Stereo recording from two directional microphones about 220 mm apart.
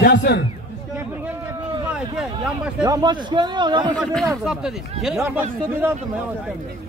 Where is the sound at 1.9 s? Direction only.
5° right (ahead or behind).